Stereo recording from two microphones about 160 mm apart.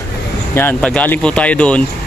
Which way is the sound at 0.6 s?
10° left (ahead or behind).